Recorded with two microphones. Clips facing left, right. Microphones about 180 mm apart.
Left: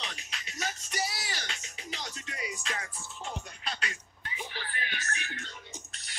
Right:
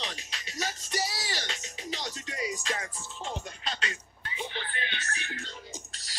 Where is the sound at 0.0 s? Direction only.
35° right (ahead or behind).